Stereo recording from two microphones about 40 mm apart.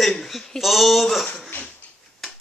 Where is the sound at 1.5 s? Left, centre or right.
Left.